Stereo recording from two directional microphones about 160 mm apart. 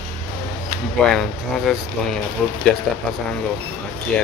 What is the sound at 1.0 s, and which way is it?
Speech, centre (ahead or behind).